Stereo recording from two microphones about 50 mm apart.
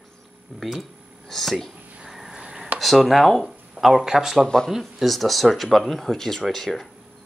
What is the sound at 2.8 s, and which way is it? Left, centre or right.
Speech, centre.